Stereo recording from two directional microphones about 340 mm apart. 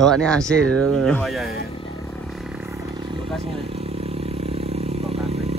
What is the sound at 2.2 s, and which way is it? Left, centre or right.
Vehicle, centre.